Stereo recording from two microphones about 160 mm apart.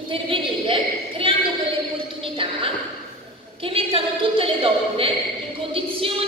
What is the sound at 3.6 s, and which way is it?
A woman's voice, 35° right (ahead or behind).